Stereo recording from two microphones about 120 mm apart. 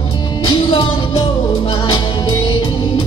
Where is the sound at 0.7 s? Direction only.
45° left (ahead or behind).